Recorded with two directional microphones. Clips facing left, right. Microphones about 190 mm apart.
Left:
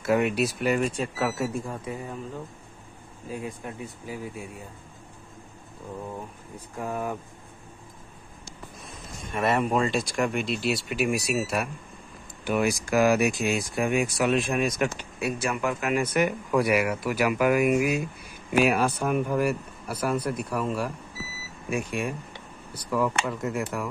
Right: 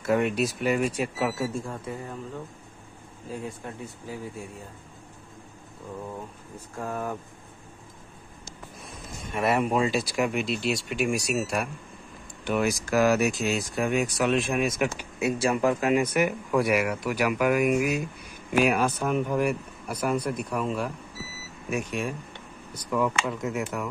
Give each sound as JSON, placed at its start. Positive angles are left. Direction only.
{"t": 0.0, "sound": "speech", "side_deg": 5}
{"t": 1.4, "sound": "speech", "side_deg": 15}
{"t": 3.3, "sound": "speech", "side_deg": 15}
{"t": 6.8, "sound": "speech", "side_deg": 15}
{"t": 9.3, "sound": "speech", "side_deg": -5}
{"t": 15.1, "sound": "speech", "side_deg": -25}
{"t": 16.0, "sound": "speech", "side_deg": -10}
{"t": 21.6, "sound": "speech", "side_deg": -5}